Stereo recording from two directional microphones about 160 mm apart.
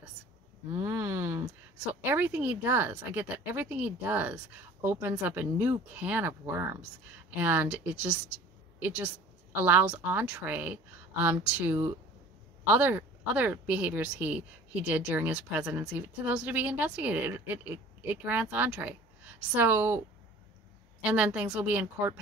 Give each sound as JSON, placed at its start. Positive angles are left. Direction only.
{"t": 0.7, "sound": "a sound", "side_deg": -20}
{"t": 2.0, "sound": "a woman's voice", "side_deg": -10}
{"t": 21.0, "sound": "a woman's voice", "side_deg": -10}